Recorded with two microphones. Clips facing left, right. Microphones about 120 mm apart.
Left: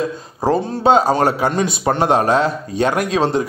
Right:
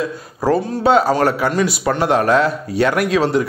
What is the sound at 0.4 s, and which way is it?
Speech, 20° left (ahead or behind).